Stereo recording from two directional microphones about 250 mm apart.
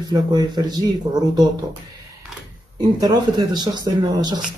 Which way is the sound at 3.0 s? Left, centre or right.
Centre.